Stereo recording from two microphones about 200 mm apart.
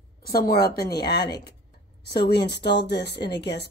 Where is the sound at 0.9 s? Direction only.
55° left (ahead or behind).